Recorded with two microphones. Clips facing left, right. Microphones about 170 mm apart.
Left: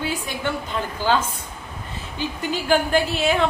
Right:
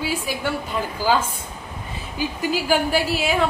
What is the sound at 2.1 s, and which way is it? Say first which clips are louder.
A woman's voice: right 2 dB; 5° right (ahead or behind).